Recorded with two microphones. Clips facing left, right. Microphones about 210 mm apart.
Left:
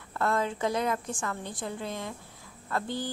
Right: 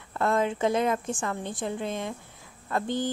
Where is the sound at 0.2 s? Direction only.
20° right (ahead or behind).